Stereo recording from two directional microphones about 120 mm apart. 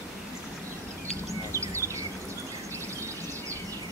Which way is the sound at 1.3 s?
25° right (ahead or behind).